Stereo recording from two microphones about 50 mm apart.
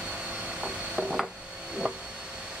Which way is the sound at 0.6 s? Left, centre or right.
Centre.